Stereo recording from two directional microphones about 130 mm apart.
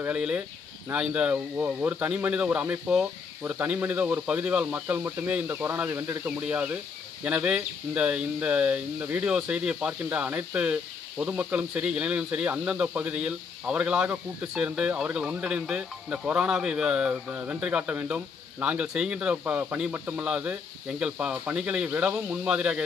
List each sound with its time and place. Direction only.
0.0 s speech: 10° right (ahead or behind)